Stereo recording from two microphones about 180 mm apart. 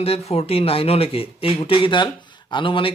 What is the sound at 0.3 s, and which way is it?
Speech, 35° left (ahead or behind).